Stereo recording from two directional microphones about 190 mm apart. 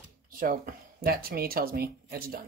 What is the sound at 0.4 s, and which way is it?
Speech, 50° right (ahead or behind).